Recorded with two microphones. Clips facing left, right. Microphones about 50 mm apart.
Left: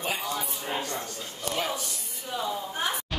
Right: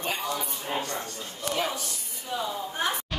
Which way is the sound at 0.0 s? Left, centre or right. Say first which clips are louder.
Even; centre.